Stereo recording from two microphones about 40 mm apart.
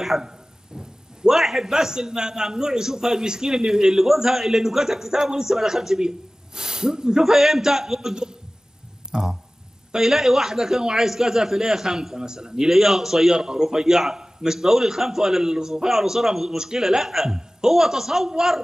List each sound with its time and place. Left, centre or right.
0.0 s a man's voice: centre